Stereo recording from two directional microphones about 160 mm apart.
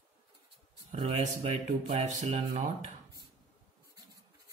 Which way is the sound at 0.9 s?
40° right (ahead or behind).